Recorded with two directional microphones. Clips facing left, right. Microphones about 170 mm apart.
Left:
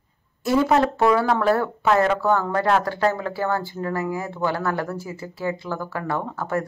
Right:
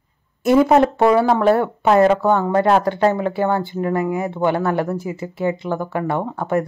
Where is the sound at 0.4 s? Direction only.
20° right (ahead or behind).